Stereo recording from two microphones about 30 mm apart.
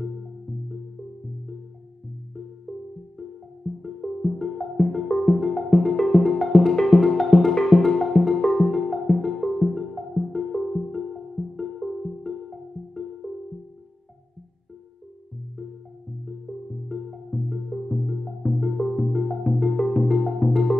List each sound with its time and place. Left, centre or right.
0.0 s music: centre
3.2 s music: centre
13.2 s music: centre
16.9 s music: centre